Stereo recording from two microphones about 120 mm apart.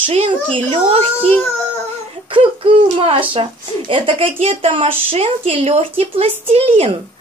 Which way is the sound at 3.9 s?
50° right (ahead or behind).